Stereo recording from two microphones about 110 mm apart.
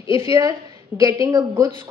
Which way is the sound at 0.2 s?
35° right (ahead or behind).